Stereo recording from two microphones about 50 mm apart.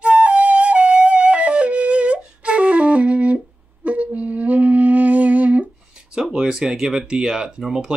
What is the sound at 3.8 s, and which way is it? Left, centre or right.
Music, right.